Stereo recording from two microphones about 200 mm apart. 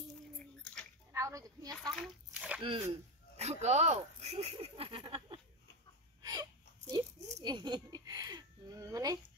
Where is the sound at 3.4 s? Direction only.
35° right (ahead or behind).